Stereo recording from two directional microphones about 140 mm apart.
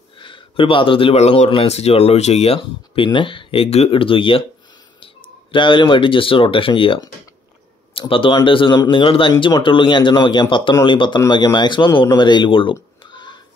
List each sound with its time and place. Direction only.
0.2 s speech: 40° left (ahead or behind)
8.1 s speech: 40° left (ahead or behind)
13.0 s a sound: 35° left (ahead or behind)